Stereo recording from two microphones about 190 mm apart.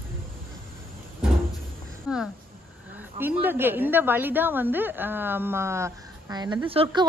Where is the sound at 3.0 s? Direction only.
10° right (ahead or behind).